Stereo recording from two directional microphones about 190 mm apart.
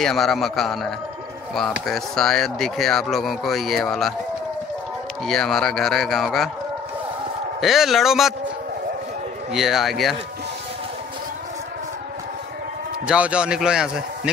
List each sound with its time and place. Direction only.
0.0 s speech: centre (ahead or behind)
5.2 s speech: centre (ahead or behind)
7.6 s speech: centre (ahead or behind)
9.5 s speech: centre (ahead or behind)
13.0 s speech: 5° right (ahead or behind)